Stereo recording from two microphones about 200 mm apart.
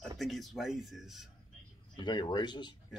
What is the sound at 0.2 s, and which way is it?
Speech, centre (ahead or behind).